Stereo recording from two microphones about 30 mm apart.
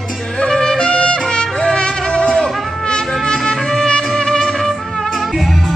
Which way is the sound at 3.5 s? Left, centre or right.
Left.